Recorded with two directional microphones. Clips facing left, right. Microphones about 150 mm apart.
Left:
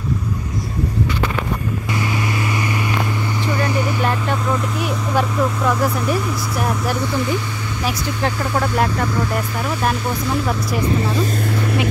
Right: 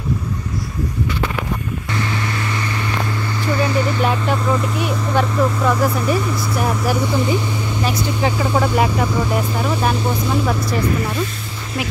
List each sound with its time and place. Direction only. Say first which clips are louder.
3.4 s vehicle: right 3 dB; 15° left (ahead or behind)
4.0 s speech: right 2 dB; centre (ahead or behind)